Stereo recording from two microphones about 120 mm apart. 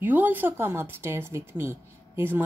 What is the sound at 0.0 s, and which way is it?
Speech, 15° right (ahead or behind).